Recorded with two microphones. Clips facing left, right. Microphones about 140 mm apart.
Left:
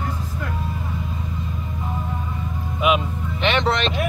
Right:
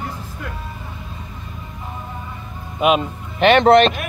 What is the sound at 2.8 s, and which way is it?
Music, 50° right (ahead or behind).